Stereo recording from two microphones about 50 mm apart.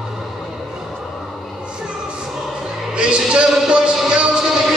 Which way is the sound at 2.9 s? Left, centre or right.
Centre.